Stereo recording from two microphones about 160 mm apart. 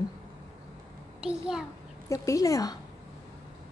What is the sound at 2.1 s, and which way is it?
Speech, 20° left (ahead or behind).